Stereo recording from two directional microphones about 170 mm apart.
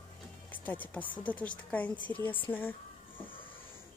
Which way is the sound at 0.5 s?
10° left (ahead or behind).